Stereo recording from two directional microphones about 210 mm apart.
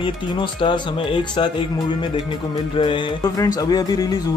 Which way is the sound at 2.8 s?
20° left (ahead or behind).